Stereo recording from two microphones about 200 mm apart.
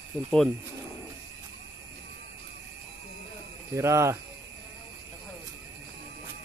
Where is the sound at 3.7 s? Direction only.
15° right (ahead or behind).